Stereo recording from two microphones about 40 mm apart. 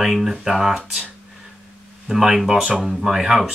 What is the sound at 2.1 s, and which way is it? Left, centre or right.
Speech, centre.